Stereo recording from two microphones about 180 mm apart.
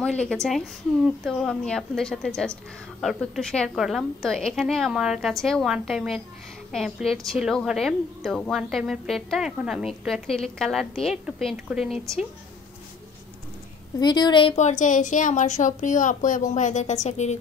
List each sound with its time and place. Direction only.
0.0 s a woman's voice: 5° left (ahead or behind)
13.9 s a woman's voice: 25° left (ahead or behind); by 17.4 s 40° left (ahead or behind)